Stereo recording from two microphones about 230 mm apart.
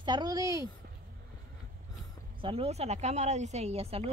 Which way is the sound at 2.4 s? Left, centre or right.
Right.